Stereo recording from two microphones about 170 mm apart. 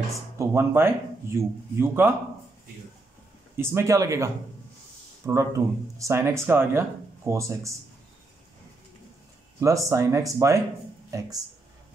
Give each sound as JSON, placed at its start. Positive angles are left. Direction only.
{"t": 0.4, "sound": "speech", "side_deg": -15}
{"t": 3.5, "sound": "speech", "side_deg": -15}
{"t": 9.6, "sound": "speech", "side_deg": -20}